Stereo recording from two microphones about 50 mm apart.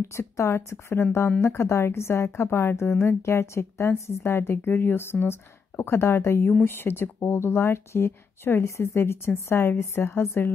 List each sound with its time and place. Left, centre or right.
0.0 s speech: left
4.2 s speech: left